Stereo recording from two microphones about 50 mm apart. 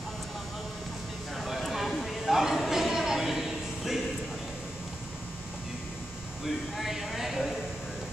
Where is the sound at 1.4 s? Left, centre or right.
Centre.